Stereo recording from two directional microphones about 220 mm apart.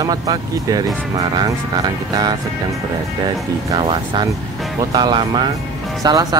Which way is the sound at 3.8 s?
20° right (ahead or behind).